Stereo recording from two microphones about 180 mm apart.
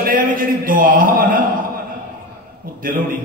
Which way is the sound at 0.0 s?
50° right (ahead or behind).